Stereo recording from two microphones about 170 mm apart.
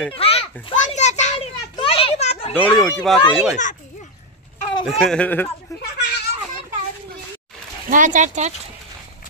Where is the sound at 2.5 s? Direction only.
10° left (ahead or behind).